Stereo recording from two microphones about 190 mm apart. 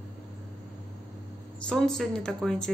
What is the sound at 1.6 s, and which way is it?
A woman's voice, 5° left (ahead or behind).